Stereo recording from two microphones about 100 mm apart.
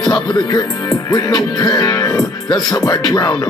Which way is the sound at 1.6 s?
40° left (ahead or behind).